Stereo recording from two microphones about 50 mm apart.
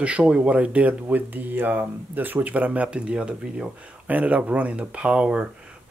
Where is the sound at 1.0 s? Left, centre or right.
Right.